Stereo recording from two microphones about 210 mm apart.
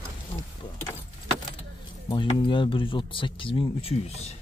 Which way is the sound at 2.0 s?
25° left (ahead or behind).